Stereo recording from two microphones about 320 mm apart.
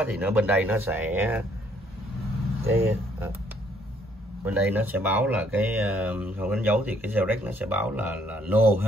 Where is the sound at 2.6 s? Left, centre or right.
Centre.